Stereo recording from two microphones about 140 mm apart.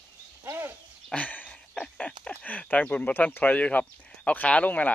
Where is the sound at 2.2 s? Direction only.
10° left (ahead or behind).